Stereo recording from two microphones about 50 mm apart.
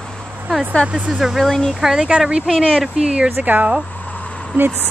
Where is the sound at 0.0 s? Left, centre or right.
Centre.